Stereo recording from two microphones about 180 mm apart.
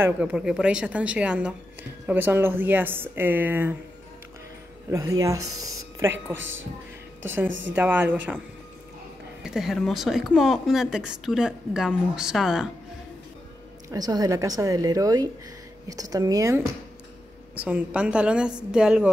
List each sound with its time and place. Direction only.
0.0 s a woman's voice: 5° right (ahead or behind)
4.9 s a woman's voice: 20° right (ahead or behind)
7.4 s speech: 90° right
7.7 s a woman's voice: 10° right (ahead or behind)
9.4 s a woman's voice: 5° right (ahead or behind)
13.8 s a woman's voice: 20° right (ahead or behind)
17.6 s a woman's voice: 5° right (ahead or behind)